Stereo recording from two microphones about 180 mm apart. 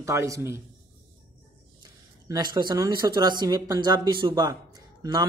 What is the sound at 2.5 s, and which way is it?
Speech, 20° right (ahead or behind).